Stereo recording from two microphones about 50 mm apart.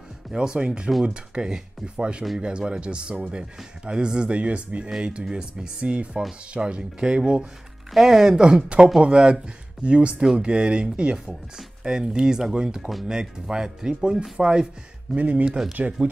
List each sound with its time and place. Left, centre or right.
0.3 s speech: centre
7.9 s speech: centre
15.1 s speech: right